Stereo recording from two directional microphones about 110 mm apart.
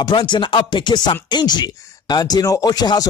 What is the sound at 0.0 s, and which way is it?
Speech, 45° left (ahead or behind).